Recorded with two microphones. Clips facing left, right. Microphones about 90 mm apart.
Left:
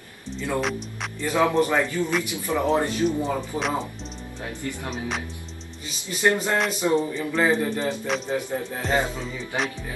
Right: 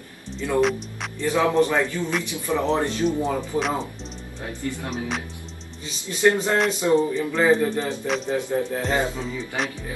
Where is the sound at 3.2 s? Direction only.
Centre (ahead or behind).